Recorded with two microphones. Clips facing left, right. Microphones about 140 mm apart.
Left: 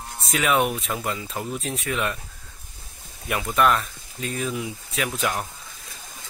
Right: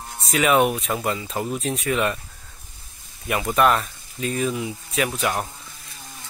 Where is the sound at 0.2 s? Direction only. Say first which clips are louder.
Right 4 dB; centre (ahead or behind).